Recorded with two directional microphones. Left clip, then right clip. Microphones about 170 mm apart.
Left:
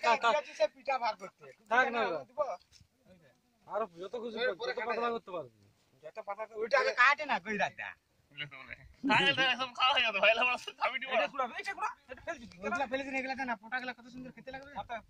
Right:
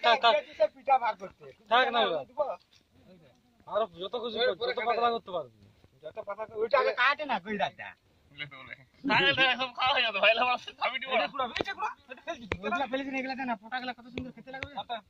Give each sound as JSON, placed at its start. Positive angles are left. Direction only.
{"t": 0.0, "sound": "speech", "side_deg": 40}
{"t": 0.4, "sound": "a sound", "side_deg": -20}
{"t": 1.7, "sound": "speech", "side_deg": 40}
{"t": 2.3, "sound": "a sound", "side_deg": 0}
{"t": 3.6, "sound": "a sound", "side_deg": 40}
{"t": 4.4, "sound": "a man's voice", "side_deg": 15}
{"t": 5.0, "sound": "speech", "side_deg": 40}
{"t": 6.1, "sound": "speech", "side_deg": 5}
{"t": 8.4, "sound": "a man's voice", "side_deg": 15}